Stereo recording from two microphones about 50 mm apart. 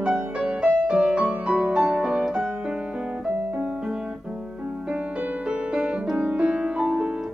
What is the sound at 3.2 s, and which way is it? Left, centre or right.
Music, centre.